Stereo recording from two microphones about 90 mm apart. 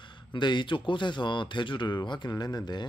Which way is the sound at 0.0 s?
60° left (ahead or behind).